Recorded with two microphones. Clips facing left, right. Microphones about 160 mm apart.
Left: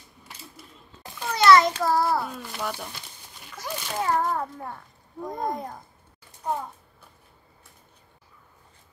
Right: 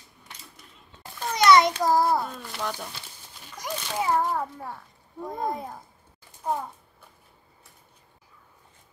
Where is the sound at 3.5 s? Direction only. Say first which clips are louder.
Even; 15° right (ahead or behind).